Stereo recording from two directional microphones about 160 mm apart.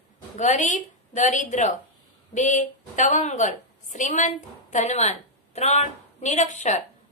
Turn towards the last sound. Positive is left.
turn(degrees=45)  # may be behind; listen again after turning